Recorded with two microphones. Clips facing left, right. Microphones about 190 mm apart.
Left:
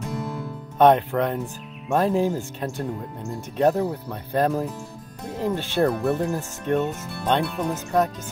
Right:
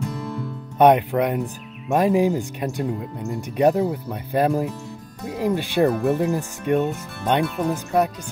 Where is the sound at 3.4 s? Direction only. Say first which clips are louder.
Right 2 dB; 15° right (ahead or behind).